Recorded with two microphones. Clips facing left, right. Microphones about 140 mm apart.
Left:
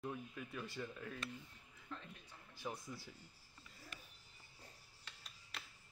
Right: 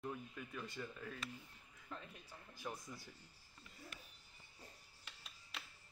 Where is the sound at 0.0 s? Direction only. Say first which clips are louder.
Left 1 dB; centre (ahead or behind).